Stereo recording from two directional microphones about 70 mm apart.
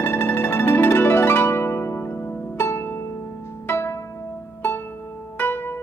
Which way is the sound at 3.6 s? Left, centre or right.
Left.